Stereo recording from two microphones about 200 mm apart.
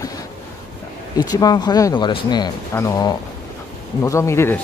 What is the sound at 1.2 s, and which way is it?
Speech, 20° left (ahead or behind).